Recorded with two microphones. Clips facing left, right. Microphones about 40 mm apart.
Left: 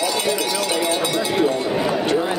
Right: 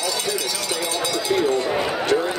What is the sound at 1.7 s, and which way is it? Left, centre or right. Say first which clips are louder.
Clip-clop: left 2 dB; centre.